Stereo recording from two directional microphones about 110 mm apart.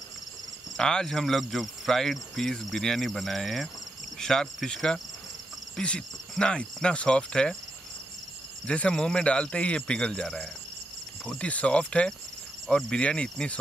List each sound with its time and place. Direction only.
0.7 s speech: 5° left (ahead or behind)
8.6 s speech: 10° left (ahead or behind)